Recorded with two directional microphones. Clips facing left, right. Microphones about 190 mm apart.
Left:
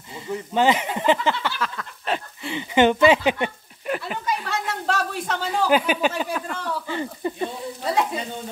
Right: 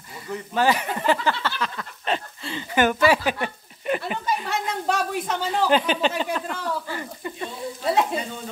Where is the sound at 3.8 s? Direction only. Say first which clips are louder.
Right 2 dB; centre (ahead or behind).